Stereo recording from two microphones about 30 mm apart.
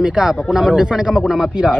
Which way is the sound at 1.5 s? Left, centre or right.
Right.